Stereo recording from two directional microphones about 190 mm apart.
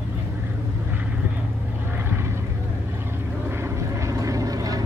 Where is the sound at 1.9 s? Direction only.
10° right (ahead or behind).